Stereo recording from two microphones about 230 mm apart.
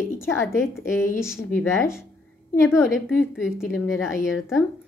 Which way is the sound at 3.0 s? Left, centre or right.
Centre.